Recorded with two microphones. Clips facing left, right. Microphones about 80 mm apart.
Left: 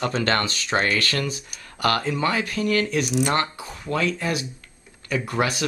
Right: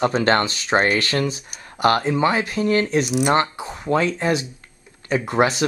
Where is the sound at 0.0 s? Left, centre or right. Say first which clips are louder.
Right 5 dB; right.